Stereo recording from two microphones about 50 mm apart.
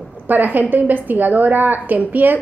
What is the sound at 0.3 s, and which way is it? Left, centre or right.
A woman's voice, right.